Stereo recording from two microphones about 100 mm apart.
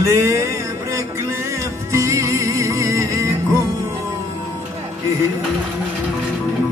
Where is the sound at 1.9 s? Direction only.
30° right (ahead or behind).